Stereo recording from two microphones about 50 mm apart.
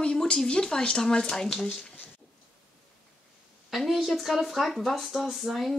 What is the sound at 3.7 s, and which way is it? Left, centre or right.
Speech, centre.